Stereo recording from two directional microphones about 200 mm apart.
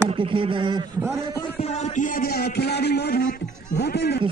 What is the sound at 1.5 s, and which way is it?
A man's voice, 30° left (ahead or behind).